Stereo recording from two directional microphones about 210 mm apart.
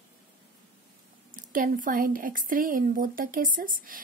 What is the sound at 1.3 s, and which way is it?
A child's voice, 40° right (ahead or behind).